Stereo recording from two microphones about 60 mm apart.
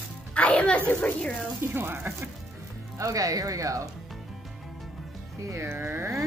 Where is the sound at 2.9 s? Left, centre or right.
Right.